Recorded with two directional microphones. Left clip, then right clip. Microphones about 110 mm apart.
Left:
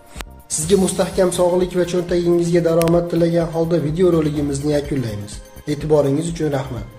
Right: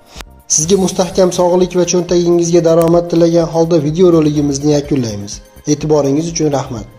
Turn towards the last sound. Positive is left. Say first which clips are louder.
# right 7 dB
turn(degrees=-50)  # may be behind; listen again after turning